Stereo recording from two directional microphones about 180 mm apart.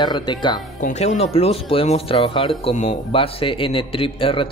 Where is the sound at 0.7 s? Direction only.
40° left (ahead or behind).